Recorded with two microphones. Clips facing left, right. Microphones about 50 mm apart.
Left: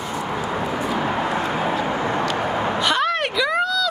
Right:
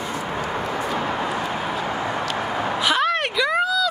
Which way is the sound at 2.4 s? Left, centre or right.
Centre.